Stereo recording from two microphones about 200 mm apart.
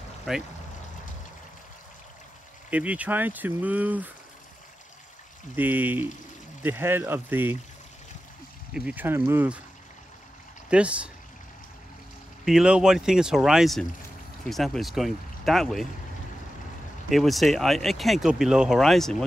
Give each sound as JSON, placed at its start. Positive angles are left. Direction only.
{"t": 0.3, "sound": "speech", "side_deg": 0}
{"t": 2.7, "sound": "speech", "side_deg": -5}
{"t": 5.6, "sound": "speech", "side_deg": -10}
{"t": 8.7, "sound": "speech", "side_deg": -5}
{"t": 10.7, "sound": "speech", "side_deg": -5}
{"t": 12.4, "sound": "speech", "side_deg": -5}
{"t": 17.1, "sound": "speech", "side_deg": 0}